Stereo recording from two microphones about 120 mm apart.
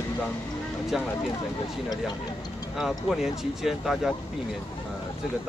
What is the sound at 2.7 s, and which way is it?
Speech, 5° right (ahead or behind).